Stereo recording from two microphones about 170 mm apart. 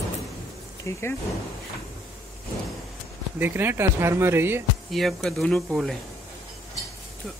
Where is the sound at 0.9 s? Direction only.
15° left (ahead or behind).